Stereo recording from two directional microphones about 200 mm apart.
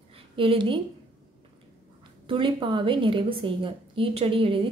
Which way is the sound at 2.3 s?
25° right (ahead or behind).